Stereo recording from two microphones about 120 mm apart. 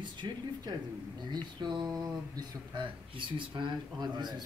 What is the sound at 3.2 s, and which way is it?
Speech, 45° right (ahead or behind).